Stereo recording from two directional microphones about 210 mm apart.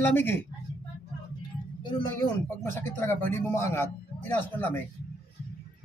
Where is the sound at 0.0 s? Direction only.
10° left (ahead or behind).